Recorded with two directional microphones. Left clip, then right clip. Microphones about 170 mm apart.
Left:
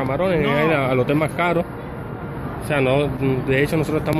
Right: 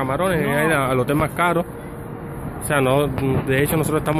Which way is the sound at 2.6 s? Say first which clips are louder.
Right 1 dB; 15° right (ahead or behind).